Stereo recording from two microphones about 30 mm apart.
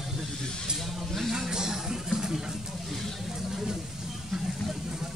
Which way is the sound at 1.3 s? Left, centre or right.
Right.